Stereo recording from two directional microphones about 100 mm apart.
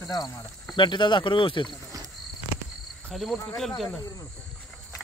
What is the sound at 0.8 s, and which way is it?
Speech, 50° left (ahead or behind).